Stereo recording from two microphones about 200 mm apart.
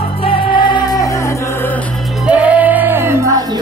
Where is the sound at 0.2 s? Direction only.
25° left (ahead or behind).